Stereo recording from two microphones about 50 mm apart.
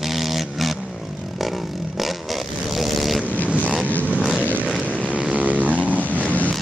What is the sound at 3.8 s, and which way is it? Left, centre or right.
Vehicle, left.